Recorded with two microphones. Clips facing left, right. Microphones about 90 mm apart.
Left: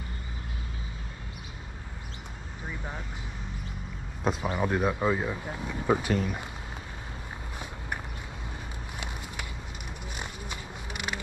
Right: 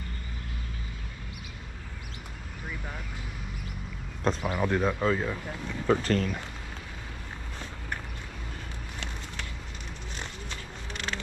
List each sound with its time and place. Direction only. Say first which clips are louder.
2.7 s vehicle: left 1 dB; 20° left (ahead or behind)
4.2 s speech: even; 10° left (ahead or behind)
10.1 s a sound: left 1 dB; 10° left (ahead or behind)